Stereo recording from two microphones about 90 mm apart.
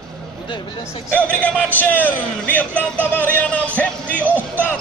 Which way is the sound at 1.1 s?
15° left (ahead or behind).